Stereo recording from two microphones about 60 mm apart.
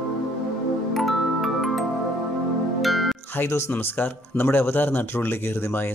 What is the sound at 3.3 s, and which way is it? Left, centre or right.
Speech, left.